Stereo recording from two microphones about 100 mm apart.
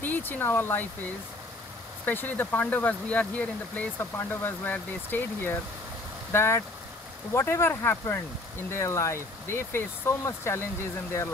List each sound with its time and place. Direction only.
0.0 s speech: 20° left (ahead or behind)
2.0 s speech: 20° left (ahead or behind)